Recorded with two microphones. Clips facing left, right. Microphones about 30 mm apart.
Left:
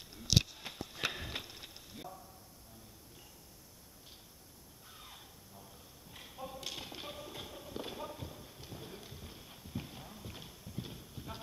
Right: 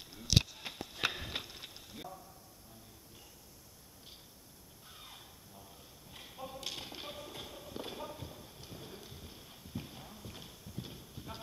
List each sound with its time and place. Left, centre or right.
0.0 s a sound: centre
4.8 s horse: centre
10.5 s clip-clop: centre